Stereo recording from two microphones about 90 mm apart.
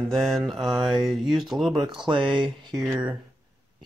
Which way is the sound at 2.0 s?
65° right (ahead or behind).